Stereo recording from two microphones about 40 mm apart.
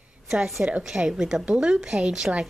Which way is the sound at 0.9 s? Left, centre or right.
Centre.